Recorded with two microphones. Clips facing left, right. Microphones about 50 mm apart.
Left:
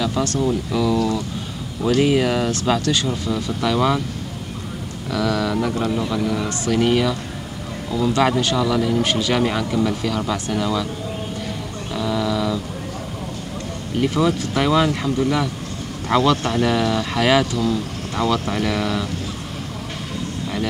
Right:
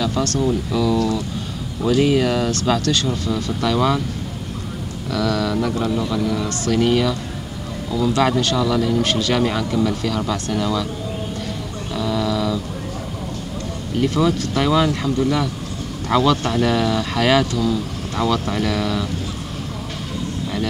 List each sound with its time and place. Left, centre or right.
0.4 s speech: centre
3.6 s speech: centre
5.1 s speech: centre
11.9 s a sound: centre
13.9 s speech: centre